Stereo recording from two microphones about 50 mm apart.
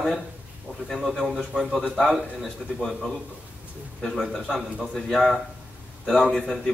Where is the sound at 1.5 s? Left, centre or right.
Centre.